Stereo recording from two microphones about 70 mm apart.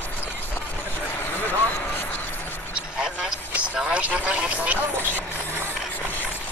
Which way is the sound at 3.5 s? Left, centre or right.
Centre.